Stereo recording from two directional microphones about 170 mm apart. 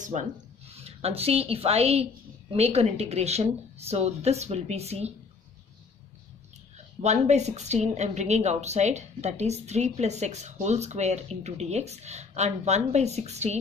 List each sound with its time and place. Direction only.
0.0 s a woman's voice: 45° right (ahead or behind)
7.0 s a woman's voice: 40° right (ahead or behind)